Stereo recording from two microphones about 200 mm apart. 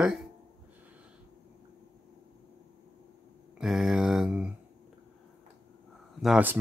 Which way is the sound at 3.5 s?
Centre (ahead or behind).